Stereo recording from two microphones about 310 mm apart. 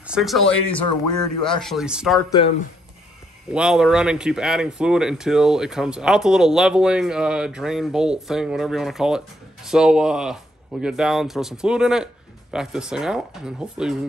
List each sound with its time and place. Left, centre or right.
0.0 s speech: centre
3.5 s speech: centre